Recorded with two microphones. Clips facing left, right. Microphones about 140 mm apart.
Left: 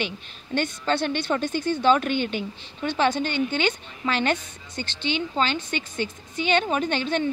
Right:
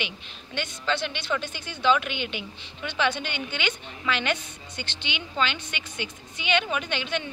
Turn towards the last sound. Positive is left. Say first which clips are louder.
# left 6 dB
turn(degrees=40)  # may be behind; listen again after turning